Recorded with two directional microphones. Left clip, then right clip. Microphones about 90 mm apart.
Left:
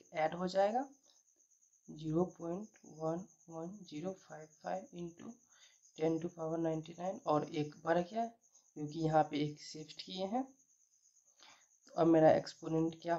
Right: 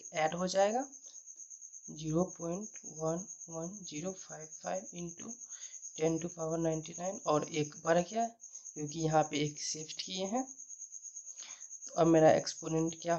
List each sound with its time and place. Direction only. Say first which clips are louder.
0.1 s speech: right 3 dB; 30° right (ahead or behind)
1.9 s speech: right 2 dB; 25° right (ahead or behind)
11.9 s speech: right 3 dB; 30° right (ahead or behind)